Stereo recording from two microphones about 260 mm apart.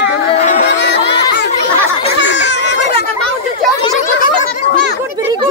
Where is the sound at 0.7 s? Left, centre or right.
Left.